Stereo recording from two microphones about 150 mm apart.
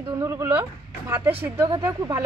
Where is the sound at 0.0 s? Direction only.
25° right (ahead or behind).